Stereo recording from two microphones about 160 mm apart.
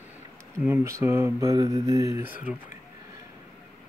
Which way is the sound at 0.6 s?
15° right (ahead or behind).